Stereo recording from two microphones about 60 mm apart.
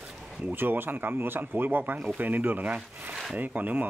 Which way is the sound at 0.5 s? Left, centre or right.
Right.